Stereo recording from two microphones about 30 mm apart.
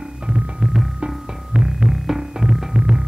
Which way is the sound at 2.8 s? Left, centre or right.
Right.